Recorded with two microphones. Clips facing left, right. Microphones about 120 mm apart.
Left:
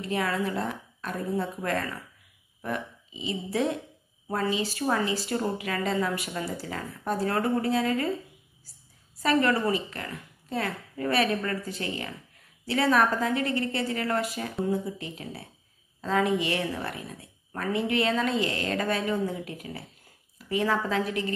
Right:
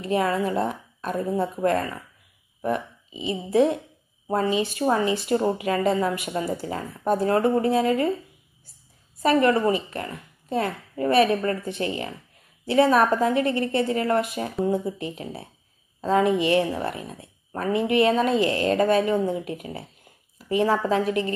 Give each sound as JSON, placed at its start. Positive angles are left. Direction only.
{"t": 0.0, "sound": "a woman's voice", "side_deg": -25}
{"t": 9.2, "sound": "a woman's voice", "side_deg": -25}
{"t": 20.3, "sound": "a sound", "side_deg": -25}
{"t": 20.8, "sound": "a woman's voice", "side_deg": -25}